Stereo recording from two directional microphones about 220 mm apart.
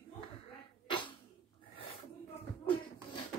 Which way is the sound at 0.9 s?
20° left (ahead or behind).